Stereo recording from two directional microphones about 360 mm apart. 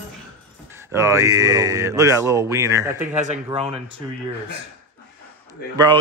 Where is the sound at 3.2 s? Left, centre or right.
Centre.